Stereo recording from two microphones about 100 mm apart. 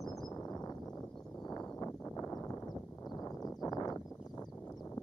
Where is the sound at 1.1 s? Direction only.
10° left (ahead or behind).